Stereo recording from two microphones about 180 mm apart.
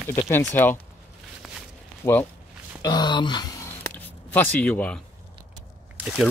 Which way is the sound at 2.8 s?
25° left (ahead or behind).